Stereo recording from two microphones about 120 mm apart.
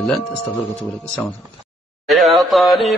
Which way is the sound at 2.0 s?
Centre (ahead or behind).